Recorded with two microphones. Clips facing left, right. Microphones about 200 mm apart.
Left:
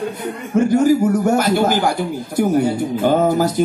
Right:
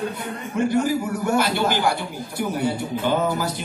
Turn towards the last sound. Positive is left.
turn(degrees=45)  # may be behind; listen again after turning